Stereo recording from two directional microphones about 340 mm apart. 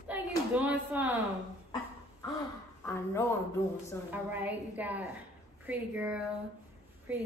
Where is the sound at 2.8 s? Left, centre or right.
Centre.